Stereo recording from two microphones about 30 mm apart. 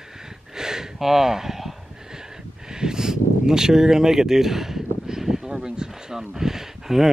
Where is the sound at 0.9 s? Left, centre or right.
Centre.